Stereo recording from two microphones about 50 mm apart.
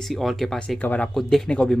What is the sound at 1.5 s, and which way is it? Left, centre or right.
Speech, centre.